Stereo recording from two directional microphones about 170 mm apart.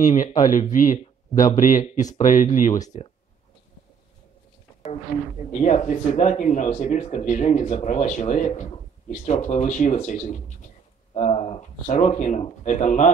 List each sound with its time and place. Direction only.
0.0 s speech: 45° left (ahead or behind)
5.5 s speech: 45° left (ahead or behind)